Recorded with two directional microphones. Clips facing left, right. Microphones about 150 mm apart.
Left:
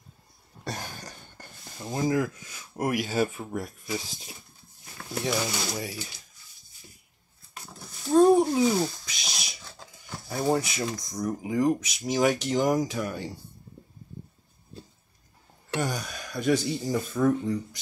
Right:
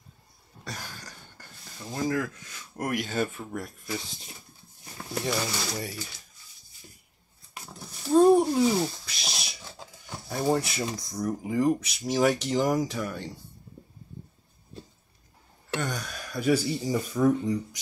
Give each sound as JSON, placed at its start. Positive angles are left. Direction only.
{"t": 0.7, "sound": "speech", "side_deg": 25}
{"t": 5.2, "sound": "speech", "side_deg": 5}
{"t": 7.5, "sound": "a sound", "side_deg": -5}
{"t": 8.2, "sound": "cat", "side_deg": 0}
{"t": 9.6, "sound": "a sound", "side_deg": -15}
{"t": 10.2, "sound": "speech", "side_deg": 0}
{"t": 15.7, "sound": "speech", "side_deg": 5}